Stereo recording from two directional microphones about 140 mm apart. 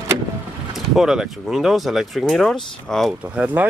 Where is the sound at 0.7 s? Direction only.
5° right (ahead or behind).